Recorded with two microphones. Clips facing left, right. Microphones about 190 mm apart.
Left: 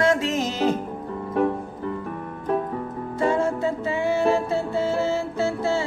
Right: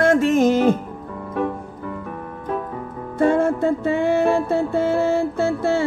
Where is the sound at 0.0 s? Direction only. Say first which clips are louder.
Right 6 dB; 55° right (ahead or behind).